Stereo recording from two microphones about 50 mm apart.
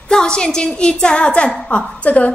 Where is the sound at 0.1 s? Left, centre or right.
Centre.